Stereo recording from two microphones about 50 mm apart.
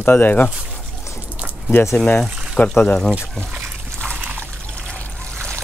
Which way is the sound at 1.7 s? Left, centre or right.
Left.